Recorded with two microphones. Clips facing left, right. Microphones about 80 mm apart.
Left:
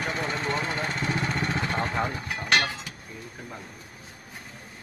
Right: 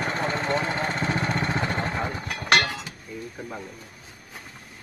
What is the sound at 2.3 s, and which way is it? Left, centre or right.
Music, right.